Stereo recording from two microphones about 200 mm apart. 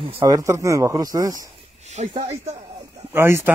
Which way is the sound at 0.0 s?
15° right (ahead or behind).